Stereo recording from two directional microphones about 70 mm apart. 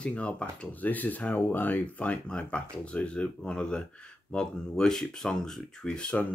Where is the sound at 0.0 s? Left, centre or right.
Centre.